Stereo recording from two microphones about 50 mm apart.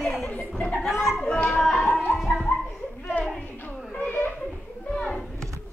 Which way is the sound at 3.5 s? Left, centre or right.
Left.